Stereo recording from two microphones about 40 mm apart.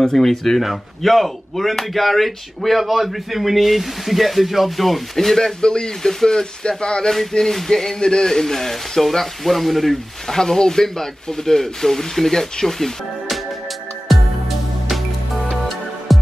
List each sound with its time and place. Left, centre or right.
0.0 s speech: centre
5.6 s speech: left
7.1 s speech: centre
16.1 s music: centre